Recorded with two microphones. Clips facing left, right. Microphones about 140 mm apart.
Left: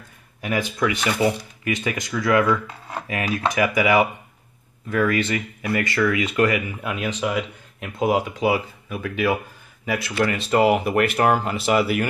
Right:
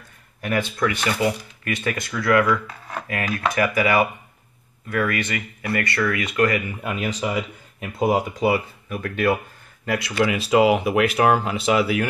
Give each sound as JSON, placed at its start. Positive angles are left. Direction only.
{"t": 0.4, "sound": "speech", "side_deg": 10}
{"t": 6.8, "sound": "speech", "side_deg": 0}